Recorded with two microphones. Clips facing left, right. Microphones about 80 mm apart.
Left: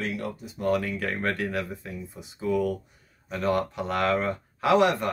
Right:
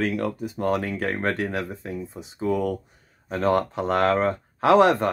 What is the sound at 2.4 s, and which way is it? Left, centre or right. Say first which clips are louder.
Speech: right 2 dB; right.